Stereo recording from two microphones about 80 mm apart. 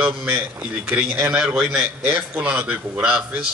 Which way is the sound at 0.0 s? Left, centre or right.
Right.